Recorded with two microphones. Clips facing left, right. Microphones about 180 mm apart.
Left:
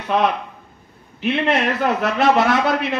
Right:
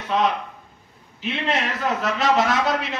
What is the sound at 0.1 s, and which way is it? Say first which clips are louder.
A man's voice: left 2 dB; 60° left (ahead or behind).